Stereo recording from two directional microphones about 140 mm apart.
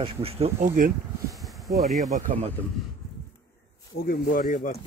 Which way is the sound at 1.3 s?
Centre (ahead or behind).